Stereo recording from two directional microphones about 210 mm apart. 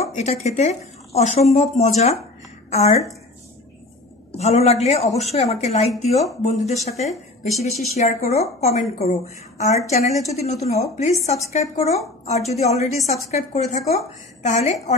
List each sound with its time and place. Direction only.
0.0 s a woman's voice: 30° left (ahead or behind)
4.3 s a woman's voice: 30° left (ahead or behind)
7.1 s speech: centre (ahead or behind)
8.3 s a woman's voice: 30° left (ahead or behind)